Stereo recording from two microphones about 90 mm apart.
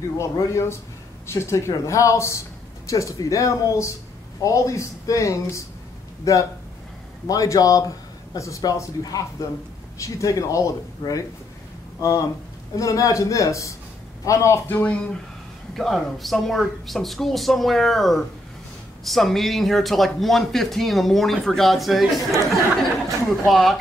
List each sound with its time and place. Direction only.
0.2 s a woman's voice: 30° left (ahead or behind)
14.7 s speech: 20° left (ahead or behind)
15.7 s speech: centre (ahead or behind)
23.2 s speech: centre (ahead or behind)